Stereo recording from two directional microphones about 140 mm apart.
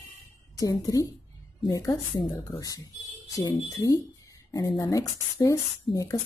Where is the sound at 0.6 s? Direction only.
25° left (ahead or behind).